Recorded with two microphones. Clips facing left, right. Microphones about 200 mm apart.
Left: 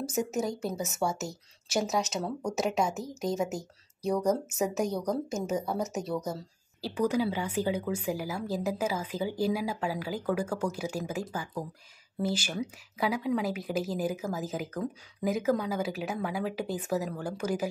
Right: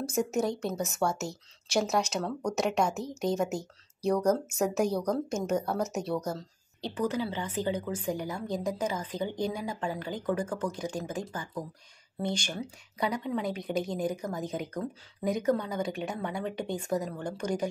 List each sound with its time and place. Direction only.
0.1 s speech: 5° left (ahead or behind)